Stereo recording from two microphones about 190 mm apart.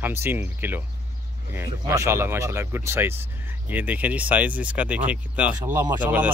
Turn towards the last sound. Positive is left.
turn(degrees=-10)  # may be behind; listen again after turning